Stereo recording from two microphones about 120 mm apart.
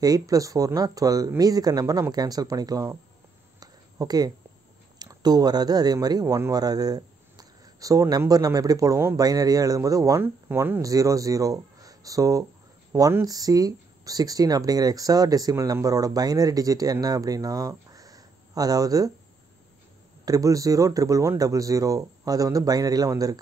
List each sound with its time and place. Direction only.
0.0 s speech: 30° right (ahead or behind)
3.5 s a sound: 30° right (ahead or behind)
4.9 s speech: 35° right (ahead or behind)
20.2 s speech: 30° right (ahead or behind)